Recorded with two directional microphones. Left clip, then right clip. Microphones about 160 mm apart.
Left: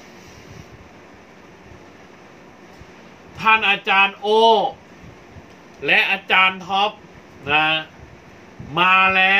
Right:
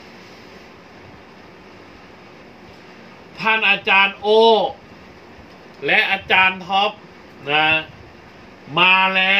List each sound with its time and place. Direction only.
3.3 s speech: 30° left (ahead or behind)
5.8 s speech: 25° left (ahead or behind)